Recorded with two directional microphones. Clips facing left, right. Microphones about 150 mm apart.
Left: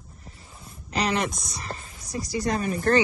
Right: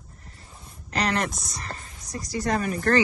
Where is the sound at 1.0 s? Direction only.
5° left (ahead or behind).